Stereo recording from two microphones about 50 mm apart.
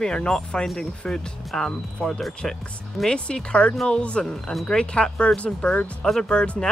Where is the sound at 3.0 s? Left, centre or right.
Centre.